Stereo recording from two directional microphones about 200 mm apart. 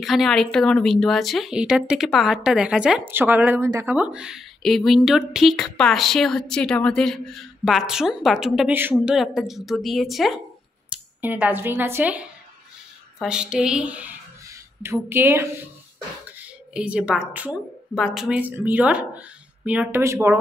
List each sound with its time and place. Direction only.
0.0 s a woman's voice: centre (ahead or behind)